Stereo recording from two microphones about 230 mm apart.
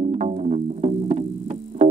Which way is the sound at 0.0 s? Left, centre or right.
Right.